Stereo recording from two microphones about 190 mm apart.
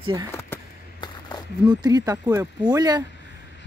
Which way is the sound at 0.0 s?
25° right (ahead or behind).